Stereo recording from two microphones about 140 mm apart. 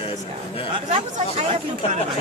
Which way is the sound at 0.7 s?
45° right (ahead or behind).